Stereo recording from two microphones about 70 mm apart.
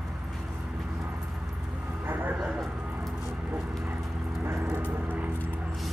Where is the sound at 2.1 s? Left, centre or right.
Right.